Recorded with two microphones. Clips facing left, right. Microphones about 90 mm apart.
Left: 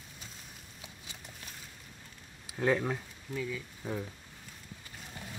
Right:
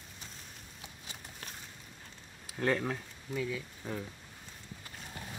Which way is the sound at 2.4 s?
5° left (ahead or behind).